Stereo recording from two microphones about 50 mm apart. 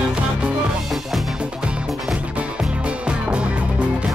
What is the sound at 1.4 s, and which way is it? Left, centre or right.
Music, centre.